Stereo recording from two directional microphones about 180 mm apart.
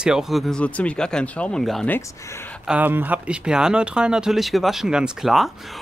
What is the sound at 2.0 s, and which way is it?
Speech, 15° left (ahead or behind).